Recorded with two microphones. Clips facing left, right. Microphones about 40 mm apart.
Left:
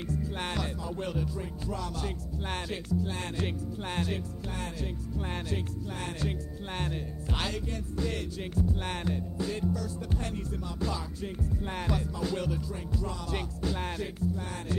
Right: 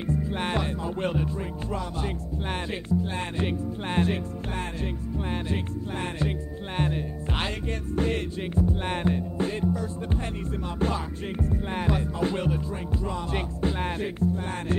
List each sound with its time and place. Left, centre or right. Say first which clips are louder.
0.0 s music: right 6 dB; right
2.9 s speech: right 5 dB; right
6.8 s music: right 9 dB; right
11.7 s music: right 5 dB; right